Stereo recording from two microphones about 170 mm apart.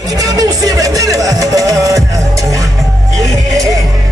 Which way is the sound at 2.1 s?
20° right (ahead or behind).